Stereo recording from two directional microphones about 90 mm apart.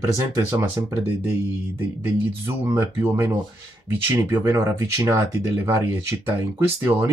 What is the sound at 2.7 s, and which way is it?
Speech, 25° right (ahead or behind).